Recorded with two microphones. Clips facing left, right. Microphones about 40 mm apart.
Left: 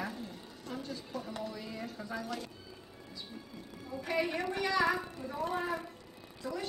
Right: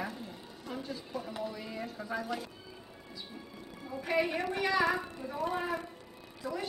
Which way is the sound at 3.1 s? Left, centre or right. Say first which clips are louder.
Even; centre.